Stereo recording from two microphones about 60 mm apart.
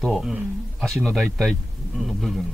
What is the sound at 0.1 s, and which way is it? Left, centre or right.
Speech, centre.